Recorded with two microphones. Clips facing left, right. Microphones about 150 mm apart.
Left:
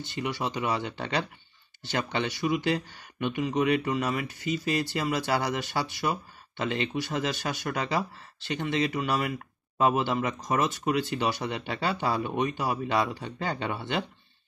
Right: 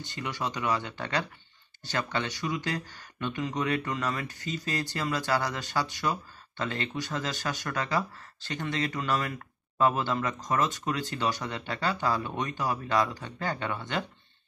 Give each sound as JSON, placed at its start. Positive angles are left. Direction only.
{"t": 0.2, "sound": "speech", "side_deg": 10}